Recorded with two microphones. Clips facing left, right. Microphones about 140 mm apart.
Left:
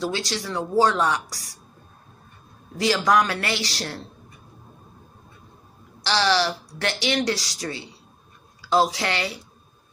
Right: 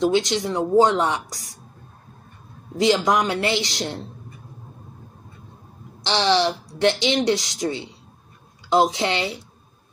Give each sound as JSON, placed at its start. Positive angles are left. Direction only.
{"t": 0.0, "sound": "speech", "side_deg": -20}
{"t": 2.8, "sound": "speech", "side_deg": -20}
{"t": 6.0, "sound": "speech", "side_deg": -20}